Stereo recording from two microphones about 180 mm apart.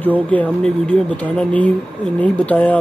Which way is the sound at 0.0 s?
10° left (ahead or behind).